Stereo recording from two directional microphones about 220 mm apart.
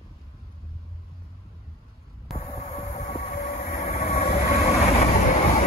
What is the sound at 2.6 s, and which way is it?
Vehicle, 30° left (ahead or behind).